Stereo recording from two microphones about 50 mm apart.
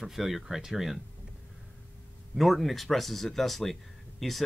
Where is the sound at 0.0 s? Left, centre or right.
Centre.